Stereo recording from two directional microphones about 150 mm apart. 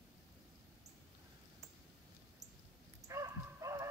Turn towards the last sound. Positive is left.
turn(degrees=-20)  # may be behind; listen again after turning